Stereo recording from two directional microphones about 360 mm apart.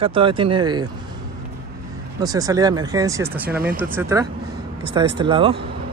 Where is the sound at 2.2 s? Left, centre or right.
Centre.